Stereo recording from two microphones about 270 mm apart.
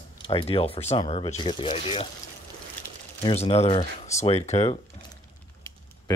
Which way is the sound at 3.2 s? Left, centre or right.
Centre.